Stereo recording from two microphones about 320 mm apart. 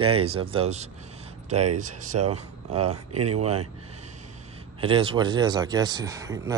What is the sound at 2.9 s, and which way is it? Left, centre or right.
Speech, right.